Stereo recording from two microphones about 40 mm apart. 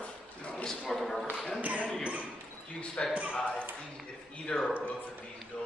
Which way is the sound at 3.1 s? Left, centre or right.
Right.